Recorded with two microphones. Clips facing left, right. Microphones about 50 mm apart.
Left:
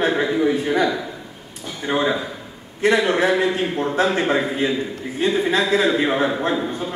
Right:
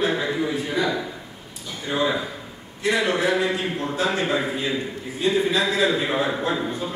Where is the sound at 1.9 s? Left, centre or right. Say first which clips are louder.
Left 3 dB; left.